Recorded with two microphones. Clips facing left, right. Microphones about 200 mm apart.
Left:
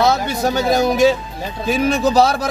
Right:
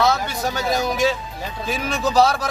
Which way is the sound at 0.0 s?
20° left (ahead or behind).